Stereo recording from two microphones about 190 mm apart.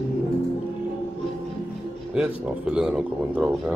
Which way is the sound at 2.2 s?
5° right (ahead or behind).